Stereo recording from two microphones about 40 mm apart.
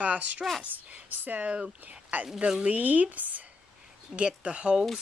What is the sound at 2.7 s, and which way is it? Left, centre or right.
Speech, right.